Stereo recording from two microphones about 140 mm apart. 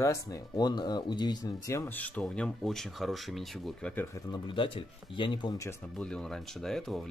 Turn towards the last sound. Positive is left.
turn(degrees=0)  # may be behind; listen again after turning